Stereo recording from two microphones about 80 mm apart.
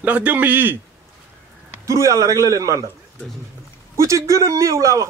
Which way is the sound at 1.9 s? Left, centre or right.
Right.